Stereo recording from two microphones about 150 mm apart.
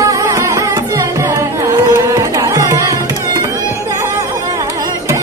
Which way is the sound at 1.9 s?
20° right (ahead or behind).